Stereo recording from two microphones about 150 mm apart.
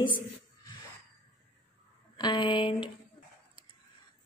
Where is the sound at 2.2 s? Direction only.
30° left (ahead or behind).